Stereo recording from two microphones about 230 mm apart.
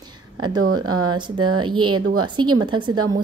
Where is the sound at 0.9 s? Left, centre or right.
Right.